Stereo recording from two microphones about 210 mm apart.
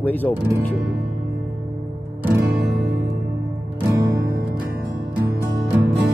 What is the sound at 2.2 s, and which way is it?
Music, 5° right (ahead or behind).